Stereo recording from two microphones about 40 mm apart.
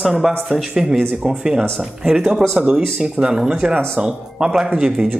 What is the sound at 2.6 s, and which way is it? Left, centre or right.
Speech, right.